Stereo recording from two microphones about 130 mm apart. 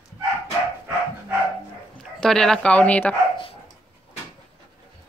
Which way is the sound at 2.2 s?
5° left (ahead or behind).